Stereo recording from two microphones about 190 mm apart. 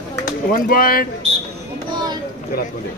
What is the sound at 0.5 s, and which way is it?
Speech, 50° left (ahead or behind).